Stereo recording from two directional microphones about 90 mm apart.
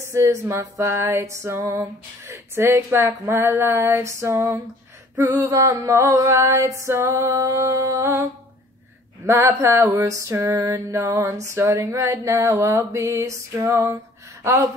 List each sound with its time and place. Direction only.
0.1 s music: 30° right (ahead or behind)
9.2 s speech: 25° right (ahead or behind)
9.5 s music: 35° right (ahead or behind)
9.8 s speech: 25° right (ahead or behind)
10.0 s music: 35° right (ahead or behind)
14.4 s speech: 30° right (ahead or behind)